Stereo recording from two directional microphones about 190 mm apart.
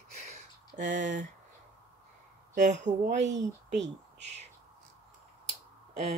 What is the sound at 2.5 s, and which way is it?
Speech, 40° right (ahead or behind).